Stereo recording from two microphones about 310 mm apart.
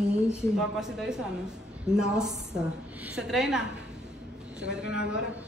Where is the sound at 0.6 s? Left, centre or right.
Centre.